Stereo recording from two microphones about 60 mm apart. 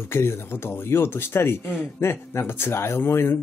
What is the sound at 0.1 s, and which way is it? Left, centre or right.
Speech, left.